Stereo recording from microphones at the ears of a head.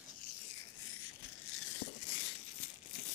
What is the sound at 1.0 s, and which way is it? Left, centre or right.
Crumpling, left.